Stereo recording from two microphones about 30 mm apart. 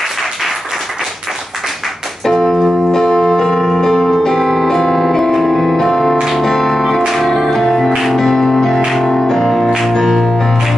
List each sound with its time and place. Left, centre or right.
2.2 s keyboard: centre
3.0 s music: left
5.9 s music: centre
7.1 s music: centre